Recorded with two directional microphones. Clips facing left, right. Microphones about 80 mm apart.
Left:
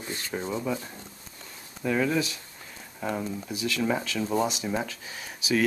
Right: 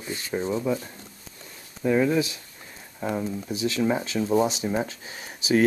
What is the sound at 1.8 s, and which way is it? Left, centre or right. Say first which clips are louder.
Speech: right 4 dB; centre.